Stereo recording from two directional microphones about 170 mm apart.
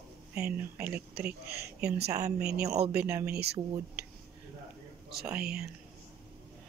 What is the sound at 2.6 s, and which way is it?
Speech, 40° right (ahead or behind).